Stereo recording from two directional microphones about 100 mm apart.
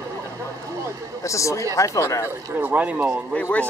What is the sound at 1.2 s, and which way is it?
Speech, 30° left (ahead or behind).